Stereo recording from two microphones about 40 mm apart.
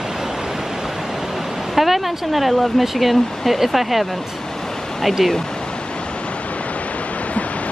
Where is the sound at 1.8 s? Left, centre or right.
Centre.